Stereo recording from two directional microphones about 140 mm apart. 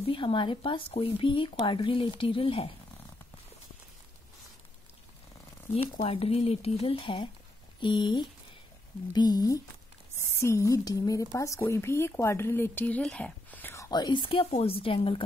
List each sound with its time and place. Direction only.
0.1 s speech: 35° left (ahead or behind)
6.0 s speech: 45° left (ahead or behind); by 13.8 s 15° left (ahead or behind)
13.8 s speech: 30° left (ahead or behind)